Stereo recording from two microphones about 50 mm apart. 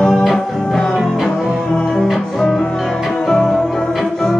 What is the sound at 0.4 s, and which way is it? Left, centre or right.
Music, centre.